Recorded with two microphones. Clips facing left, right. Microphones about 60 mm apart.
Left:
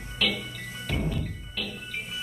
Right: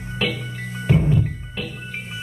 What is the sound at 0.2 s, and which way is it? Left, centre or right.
Music, right.